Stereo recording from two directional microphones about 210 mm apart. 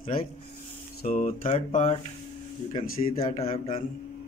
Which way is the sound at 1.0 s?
35° left (ahead or behind).